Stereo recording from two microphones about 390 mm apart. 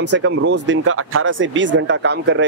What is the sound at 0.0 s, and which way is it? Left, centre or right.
Speech, right.